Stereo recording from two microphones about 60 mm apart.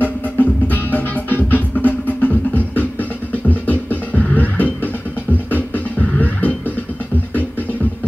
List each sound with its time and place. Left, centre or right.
0.0 s music: left